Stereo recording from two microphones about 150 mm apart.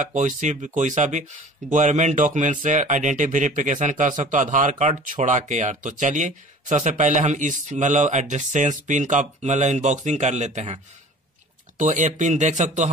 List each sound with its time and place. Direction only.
0.0 s speech: 55° right (ahead or behind)
11.8 s speech: 55° right (ahead or behind)